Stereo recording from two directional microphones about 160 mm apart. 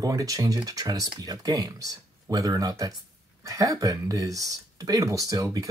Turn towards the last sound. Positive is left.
turn(degrees=-20)  # may be behind; listen again after turning